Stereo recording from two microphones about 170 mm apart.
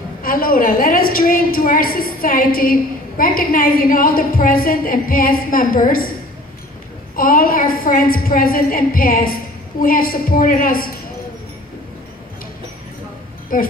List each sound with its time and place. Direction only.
0.2 s a woman's voice: 55° left (ahead or behind)
7.2 s a woman's voice: 55° left (ahead or behind)
13.5 s speech: 50° left (ahead or behind)